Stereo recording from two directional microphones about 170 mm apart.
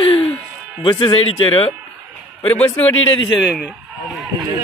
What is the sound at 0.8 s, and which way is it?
Speech, 25° left (ahead or behind).